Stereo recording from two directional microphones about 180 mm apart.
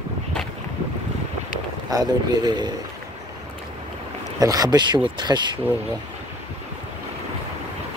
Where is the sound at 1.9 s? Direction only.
25° right (ahead or behind).